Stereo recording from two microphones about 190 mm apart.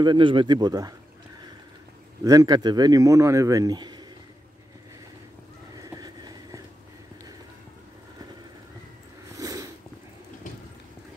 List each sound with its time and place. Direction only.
0.0 s speech: 25° right (ahead or behind)
2.2 s speech: 20° right (ahead or behind)
5.8 s clip-clop: 20° right (ahead or behind)
9.3 s a sound: 15° right (ahead or behind)